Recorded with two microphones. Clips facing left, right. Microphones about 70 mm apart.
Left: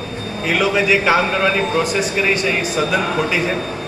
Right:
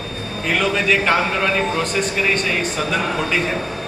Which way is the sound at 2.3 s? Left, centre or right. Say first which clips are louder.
Left 2 dB; centre.